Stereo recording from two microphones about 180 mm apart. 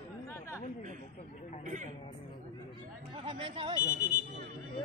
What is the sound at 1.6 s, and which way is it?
Speech, 45° right (ahead or behind).